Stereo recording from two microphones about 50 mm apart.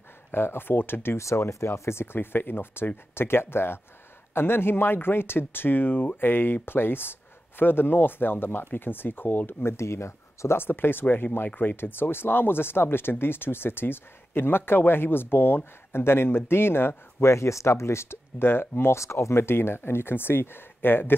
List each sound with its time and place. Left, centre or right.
0.3 s speech: left
1.1 s speech: left
1.7 s speech: left
10.6 s speech: left
17.3 s speech: left
18.9 s speech: left